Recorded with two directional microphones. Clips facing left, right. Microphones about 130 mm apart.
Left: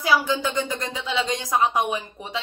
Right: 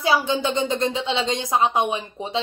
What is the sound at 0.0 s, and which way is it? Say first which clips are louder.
A woman's voice: right 1 dB; 25° right (ahead or behind).